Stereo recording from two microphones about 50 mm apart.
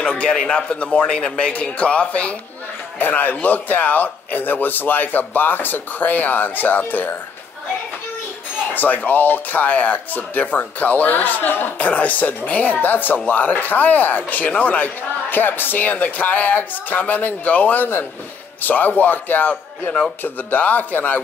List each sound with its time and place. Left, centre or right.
0.3 s a man's voice: centre
3.0 s a man's voice: left
8.7 s a man's voice: left